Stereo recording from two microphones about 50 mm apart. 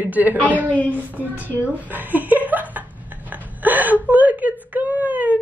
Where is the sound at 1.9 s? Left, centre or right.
Right.